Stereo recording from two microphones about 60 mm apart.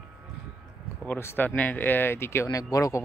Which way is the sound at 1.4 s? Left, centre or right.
Left.